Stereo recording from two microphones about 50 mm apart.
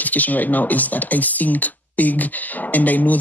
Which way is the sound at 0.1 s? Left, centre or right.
Left.